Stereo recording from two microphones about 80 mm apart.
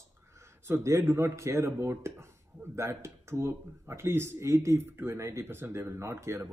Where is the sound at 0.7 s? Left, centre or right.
Right.